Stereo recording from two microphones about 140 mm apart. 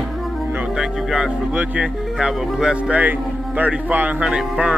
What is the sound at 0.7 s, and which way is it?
Speech, 5° right (ahead or behind).